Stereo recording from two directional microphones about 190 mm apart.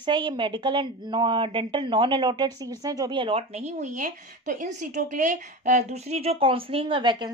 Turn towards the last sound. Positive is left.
turn(degrees=-25)  # may be behind; listen again after turning